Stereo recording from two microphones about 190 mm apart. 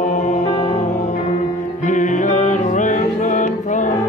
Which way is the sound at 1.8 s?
40° left (ahead or behind).